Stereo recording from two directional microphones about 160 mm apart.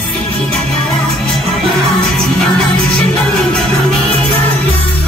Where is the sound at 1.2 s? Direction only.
5° left (ahead or behind).